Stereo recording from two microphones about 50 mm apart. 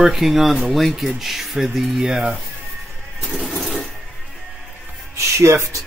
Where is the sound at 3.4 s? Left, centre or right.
Centre.